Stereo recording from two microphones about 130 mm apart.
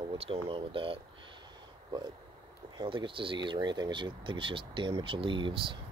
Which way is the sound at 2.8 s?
40° right (ahead or behind).